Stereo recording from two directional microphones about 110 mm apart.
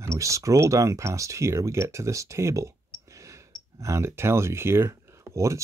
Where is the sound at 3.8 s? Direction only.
25° right (ahead or behind).